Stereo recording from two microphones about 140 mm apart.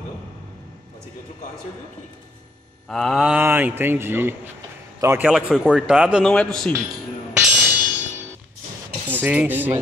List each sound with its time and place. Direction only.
2.9 s a man's voice: centre (ahead or behind); by 5.3 s 15° right (ahead or behind)
5.3 s speech: 5° right (ahead or behind)
6.2 s speech: 5° left (ahead or behind)
7.3 s music: 10° right (ahead or behind)
9.0 s speech: 10° right (ahead or behind)